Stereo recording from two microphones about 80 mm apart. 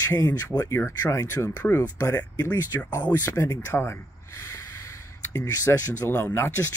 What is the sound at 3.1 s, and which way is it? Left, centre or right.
Speech, left.